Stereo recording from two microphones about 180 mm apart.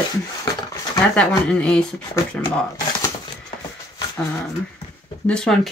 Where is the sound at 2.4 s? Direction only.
20° left (ahead or behind).